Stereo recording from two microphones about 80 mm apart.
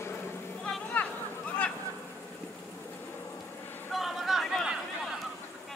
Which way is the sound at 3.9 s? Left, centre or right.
Centre.